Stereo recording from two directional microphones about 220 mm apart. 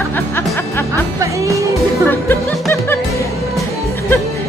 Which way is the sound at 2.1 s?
10° left (ahead or behind).